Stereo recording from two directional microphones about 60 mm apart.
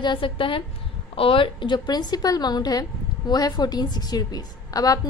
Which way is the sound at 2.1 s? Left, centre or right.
Left.